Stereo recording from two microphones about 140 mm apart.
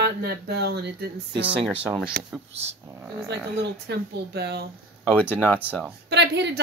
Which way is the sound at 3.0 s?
20° right (ahead or behind).